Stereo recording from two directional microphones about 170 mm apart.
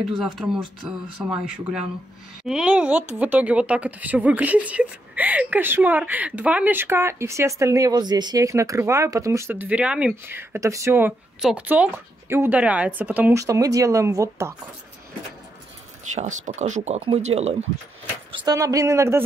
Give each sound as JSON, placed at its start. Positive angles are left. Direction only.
{"t": 0.1, "sound": "speech", "side_deg": -5}
{"t": 16.2, "sound": "speech", "side_deg": -45}
{"t": 18.3, "sound": "speech", "side_deg": -25}